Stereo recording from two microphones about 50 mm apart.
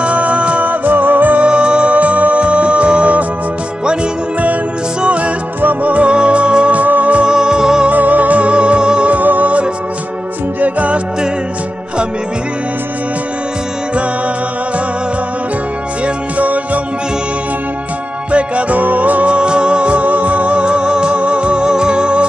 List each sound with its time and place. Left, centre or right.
0.0 s music: right
1.4 s music: centre
5.0 s music: right
7.2 s music: centre
7.9 s music: right
16.3 s music: right
18.3 s music: right